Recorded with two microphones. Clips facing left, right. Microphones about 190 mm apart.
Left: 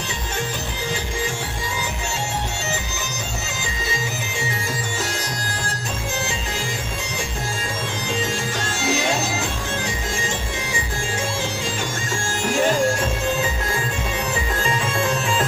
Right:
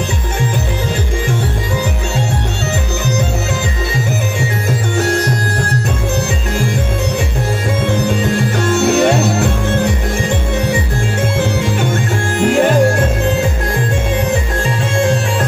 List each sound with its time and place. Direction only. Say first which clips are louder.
5.0 s music: right 12 dB; 60° right (ahead or behind)
7.8 s music: right 10 dB; 60° right (ahead or behind)
12.4 s music: right 8 dB; 60° right (ahead or behind)